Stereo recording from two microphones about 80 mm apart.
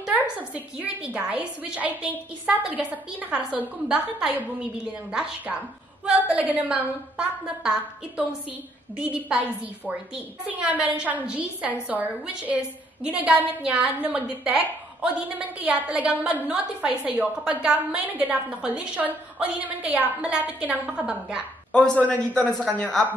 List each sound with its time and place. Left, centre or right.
0.0 s a woman's voice: centre
10.4 s a woman's voice: centre
21.7 s a man's voice: centre